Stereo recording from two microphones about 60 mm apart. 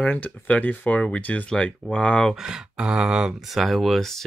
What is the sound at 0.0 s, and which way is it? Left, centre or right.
Speech, left.